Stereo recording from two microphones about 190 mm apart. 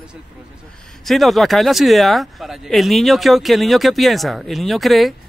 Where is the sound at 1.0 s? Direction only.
Centre (ahead or behind).